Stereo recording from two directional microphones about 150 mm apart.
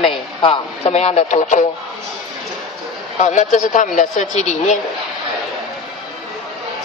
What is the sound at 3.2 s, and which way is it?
A woman's voice, 55° left (ahead or behind).